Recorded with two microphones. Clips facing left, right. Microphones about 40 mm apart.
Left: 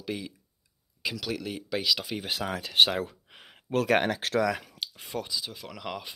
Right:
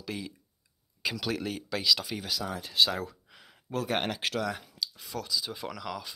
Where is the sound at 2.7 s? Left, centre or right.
Left.